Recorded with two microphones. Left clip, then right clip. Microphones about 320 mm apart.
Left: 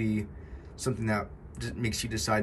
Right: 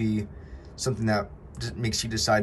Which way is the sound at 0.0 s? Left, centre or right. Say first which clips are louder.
Right 3 dB; centre.